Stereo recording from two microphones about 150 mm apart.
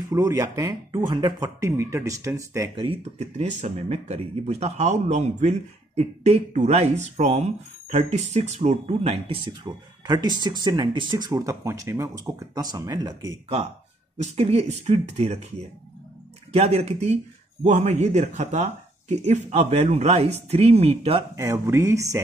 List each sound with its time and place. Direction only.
0.1 s speech: 25° right (ahead or behind)
2.7 s speech: 35° right (ahead or behind)
9.7 s speech: 25° right (ahead or behind)
14.1 s speech: 45° right (ahead or behind)
16.5 s speech: 45° right (ahead or behind)
21.4 s speech: 20° right (ahead or behind)